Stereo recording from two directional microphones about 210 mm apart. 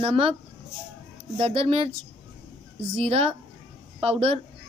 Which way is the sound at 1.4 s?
30° right (ahead or behind).